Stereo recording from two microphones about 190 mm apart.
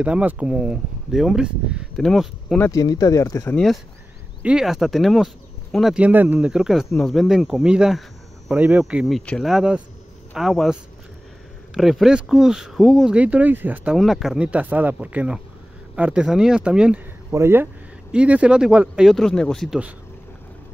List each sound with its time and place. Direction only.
0.0 s speech: 5° right (ahead or behind)
2.7 s speech: 20° left (ahead or behind)
3.5 s speech: centre (ahead or behind)